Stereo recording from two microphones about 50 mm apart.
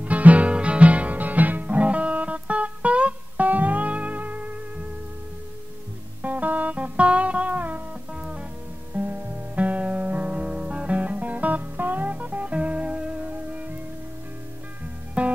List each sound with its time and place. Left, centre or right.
0.0 s music: right
6.2 s music: right
8.1 s music: centre
8.9 s music: right
15.2 s music: right